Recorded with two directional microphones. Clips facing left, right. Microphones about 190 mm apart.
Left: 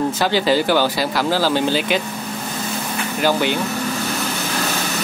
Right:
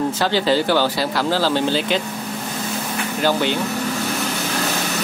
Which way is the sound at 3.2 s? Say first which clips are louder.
Left 1 dB; 10° left (ahead or behind).